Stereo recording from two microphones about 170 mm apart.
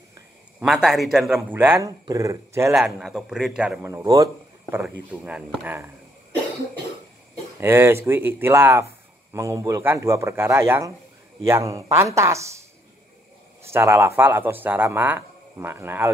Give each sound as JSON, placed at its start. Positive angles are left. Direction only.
{"t": 0.6, "sound": "speech", "side_deg": -5}
{"t": 2.7, "sound": "a man's voice", "side_deg": 0}
{"t": 3.8, "sound": "speech", "side_deg": -20}
{"t": 7.6, "sound": "speech", "side_deg": -15}